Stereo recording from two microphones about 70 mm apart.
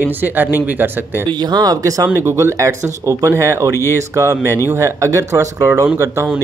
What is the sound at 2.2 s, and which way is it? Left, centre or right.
Speech, right.